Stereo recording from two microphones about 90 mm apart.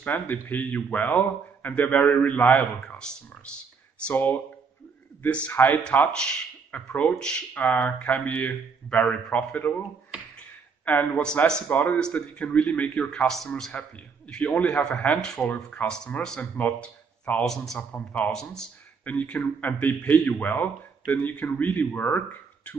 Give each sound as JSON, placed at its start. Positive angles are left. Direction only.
{"t": 0.0, "sound": "speech", "side_deg": 20}
{"t": 4.1, "sound": "a man's voice", "side_deg": 25}
{"t": 5.9, "sound": "speech", "side_deg": 10}
{"t": 10.9, "sound": "a man's voice", "side_deg": 20}
{"t": 11.4, "sound": "speech", "side_deg": 10}
{"t": 13.5, "sound": "a man's voice", "side_deg": 5}
{"t": 17.9, "sound": "speech", "side_deg": 15}
{"t": 18.3, "sound": "a man's voice", "side_deg": 5}
{"t": 19.0, "sound": "a man's voice", "side_deg": 15}